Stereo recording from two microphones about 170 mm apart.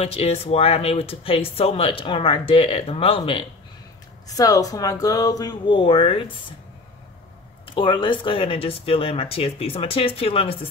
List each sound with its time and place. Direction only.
0.0 s speech: 35° left (ahead or behind)
4.3 s speech: 20° left (ahead or behind)
7.6 s speech: 30° left (ahead or behind)